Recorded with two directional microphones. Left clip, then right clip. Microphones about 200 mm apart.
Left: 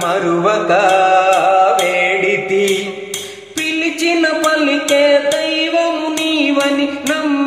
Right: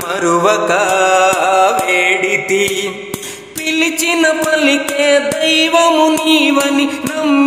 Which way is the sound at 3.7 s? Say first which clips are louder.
Right 2 dB; 45° right (ahead or behind).